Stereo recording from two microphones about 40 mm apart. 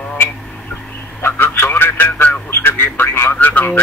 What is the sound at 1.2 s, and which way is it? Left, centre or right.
Radio, left.